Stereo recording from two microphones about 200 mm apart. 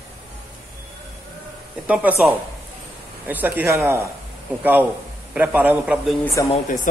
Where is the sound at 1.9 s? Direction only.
5° right (ahead or behind).